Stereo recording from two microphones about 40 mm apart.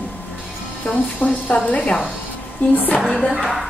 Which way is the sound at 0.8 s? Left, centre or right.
Left.